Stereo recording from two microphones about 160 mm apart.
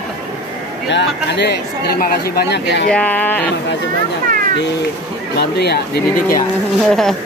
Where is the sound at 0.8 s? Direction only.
90° left.